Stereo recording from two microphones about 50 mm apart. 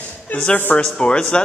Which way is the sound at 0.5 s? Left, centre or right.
Left.